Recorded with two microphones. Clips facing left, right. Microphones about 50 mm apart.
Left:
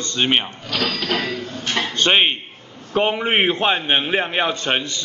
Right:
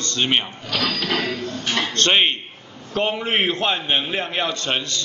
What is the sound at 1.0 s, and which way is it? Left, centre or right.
Speech, left.